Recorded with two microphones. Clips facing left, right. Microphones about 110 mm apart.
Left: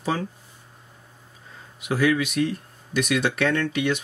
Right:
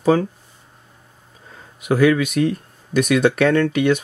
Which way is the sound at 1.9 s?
55° right (ahead or behind).